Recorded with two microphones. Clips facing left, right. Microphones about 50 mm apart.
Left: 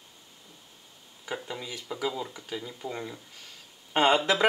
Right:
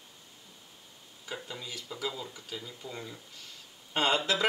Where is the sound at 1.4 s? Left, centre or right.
Centre.